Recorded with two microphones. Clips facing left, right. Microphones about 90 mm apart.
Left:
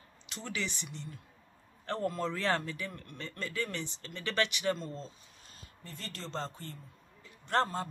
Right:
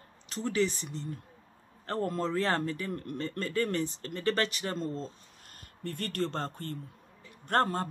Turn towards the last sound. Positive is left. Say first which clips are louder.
# right 3 dB
turn(degrees=-50)  # may be behind; listen again after turning